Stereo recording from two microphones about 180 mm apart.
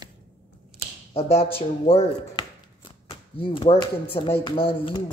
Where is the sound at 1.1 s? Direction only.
35° left (ahead or behind).